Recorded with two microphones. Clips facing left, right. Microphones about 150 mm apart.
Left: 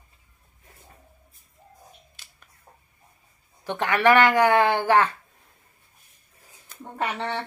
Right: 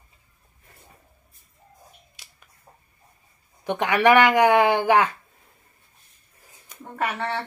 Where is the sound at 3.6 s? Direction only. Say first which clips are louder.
Right 2 dB; 15° right (ahead or behind).